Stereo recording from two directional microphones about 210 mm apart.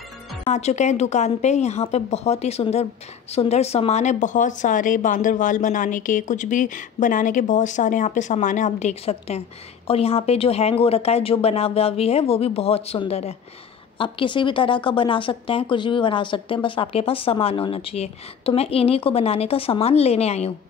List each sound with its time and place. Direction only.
0.5 s a woman's voice: 30° left (ahead or behind)